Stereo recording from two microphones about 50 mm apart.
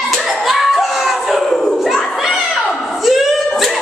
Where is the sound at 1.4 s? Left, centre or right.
Centre.